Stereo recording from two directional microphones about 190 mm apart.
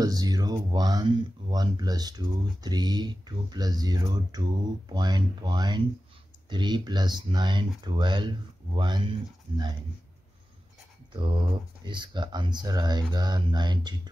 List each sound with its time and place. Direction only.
0.0 s speech: 20° right (ahead or behind)
11.1 s speech: 25° right (ahead or behind)